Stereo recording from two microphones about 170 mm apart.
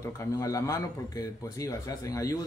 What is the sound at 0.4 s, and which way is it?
A man's voice, 20° left (ahead or behind).